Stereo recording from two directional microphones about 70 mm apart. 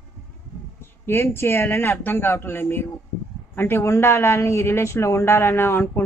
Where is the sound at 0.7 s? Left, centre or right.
Left.